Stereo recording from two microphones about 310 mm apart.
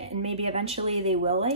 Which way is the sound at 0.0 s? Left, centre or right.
Centre.